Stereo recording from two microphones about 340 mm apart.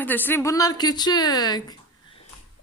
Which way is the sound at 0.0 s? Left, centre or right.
Centre.